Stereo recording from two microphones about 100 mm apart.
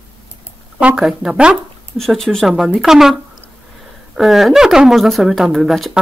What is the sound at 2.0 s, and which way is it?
Speech, 5° left (ahead or behind).